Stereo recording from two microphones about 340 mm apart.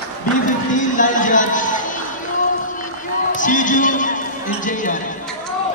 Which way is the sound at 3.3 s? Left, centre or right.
Left.